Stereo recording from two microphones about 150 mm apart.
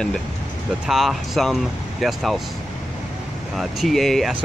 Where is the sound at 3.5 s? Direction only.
Centre (ahead or behind).